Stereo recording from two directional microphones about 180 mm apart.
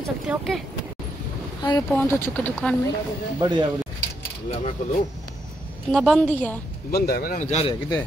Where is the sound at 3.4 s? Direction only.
25° right (ahead or behind).